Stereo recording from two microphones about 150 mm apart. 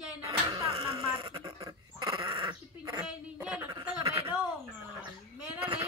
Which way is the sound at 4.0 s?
40° right (ahead or behind).